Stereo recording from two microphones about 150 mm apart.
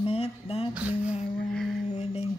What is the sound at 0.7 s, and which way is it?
Speech, 10° right (ahead or behind).